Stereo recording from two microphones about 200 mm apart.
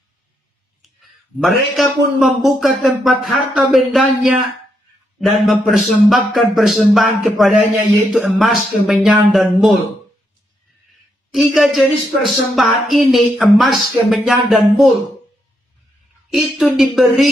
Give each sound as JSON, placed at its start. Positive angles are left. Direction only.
{"t": 0.8, "sound": "a woman's voice", "side_deg": 0}
{"t": 11.3, "sound": "a woman's voice", "side_deg": 0}
{"t": 16.3, "sound": "a woman's voice", "side_deg": 0}